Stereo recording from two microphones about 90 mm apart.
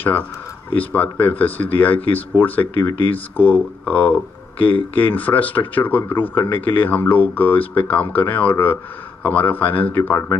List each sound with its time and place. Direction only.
0.7 s speech: 20° left (ahead or behind)